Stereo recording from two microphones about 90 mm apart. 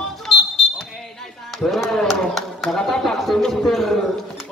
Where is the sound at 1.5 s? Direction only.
Centre (ahead or behind).